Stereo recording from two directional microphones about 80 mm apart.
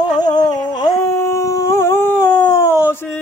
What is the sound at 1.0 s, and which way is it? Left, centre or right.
Howl, left.